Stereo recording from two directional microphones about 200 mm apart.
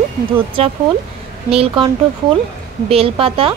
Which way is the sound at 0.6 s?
30° right (ahead or behind).